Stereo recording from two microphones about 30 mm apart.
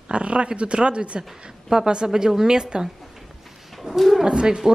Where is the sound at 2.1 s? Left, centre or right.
Centre.